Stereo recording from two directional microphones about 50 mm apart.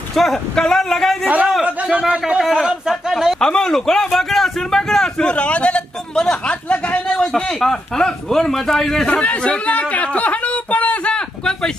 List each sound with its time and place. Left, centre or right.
0.1 s speech: centre
1.2 s a man's voice: right; by 3.3 s centre
3.3 s speech: centre
5.2 s a man's voice: left; by 9.0 s centre
9.0 s a man's voice: left